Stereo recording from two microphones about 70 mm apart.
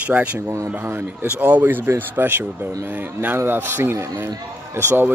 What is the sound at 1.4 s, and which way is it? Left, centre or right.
Speech, right.